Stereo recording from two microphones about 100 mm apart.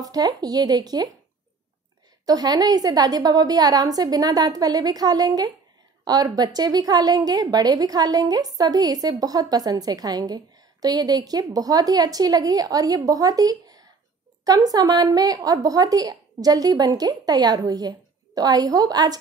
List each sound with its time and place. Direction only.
0.0 s a woman's voice: 40° right (ahead or behind)
2.2 s a woman's voice: 40° right (ahead or behind)